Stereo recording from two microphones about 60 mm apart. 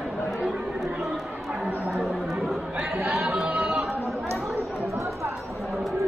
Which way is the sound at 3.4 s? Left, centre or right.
Right.